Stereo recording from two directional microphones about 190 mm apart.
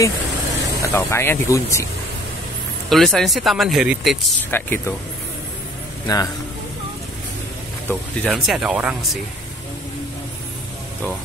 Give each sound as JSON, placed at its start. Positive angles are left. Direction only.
{"t": 0.8, "sound": "speech", "side_deg": 15}
{"t": 2.9, "sound": "speech", "side_deg": 0}
{"t": 4.5, "sound": "speech", "side_deg": 10}
{"t": 6.1, "sound": "a man's voice", "side_deg": 20}
{"t": 7.9, "sound": "speech", "side_deg": 0}